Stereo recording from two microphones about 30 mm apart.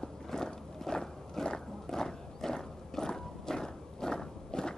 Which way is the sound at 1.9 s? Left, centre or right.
Centre.